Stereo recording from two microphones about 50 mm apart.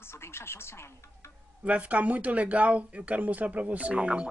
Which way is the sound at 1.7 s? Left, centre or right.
Right.